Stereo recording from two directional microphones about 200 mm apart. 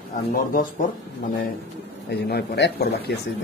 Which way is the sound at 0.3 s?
45° left (ahead or behind).